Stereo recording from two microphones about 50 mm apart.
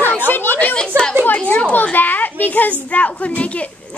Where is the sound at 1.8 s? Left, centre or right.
Left.